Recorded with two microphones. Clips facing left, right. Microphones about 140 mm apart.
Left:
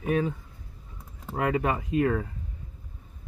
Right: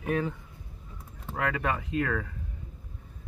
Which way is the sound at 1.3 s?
25° left (ahead or behind).